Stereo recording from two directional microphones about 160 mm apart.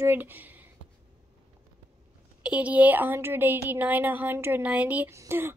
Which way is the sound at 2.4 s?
10° right (ahead or behind).